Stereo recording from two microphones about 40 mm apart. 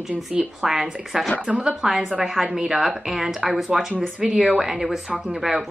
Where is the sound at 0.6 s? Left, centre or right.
Centre.